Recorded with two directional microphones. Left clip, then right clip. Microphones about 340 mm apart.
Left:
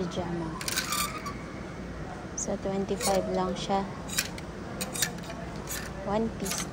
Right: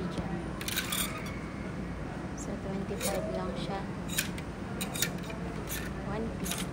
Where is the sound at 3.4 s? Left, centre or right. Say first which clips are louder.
Left 7 dB; centre.